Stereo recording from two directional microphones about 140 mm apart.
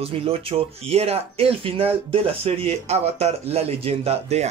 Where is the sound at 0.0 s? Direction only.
45° right (ahead or behind).